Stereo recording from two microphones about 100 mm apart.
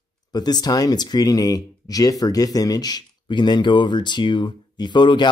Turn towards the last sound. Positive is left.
turn(degrees=50)  # may be behind; listen again after turning